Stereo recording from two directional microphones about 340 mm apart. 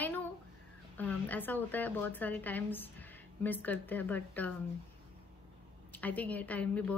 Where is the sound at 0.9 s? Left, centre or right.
Centre.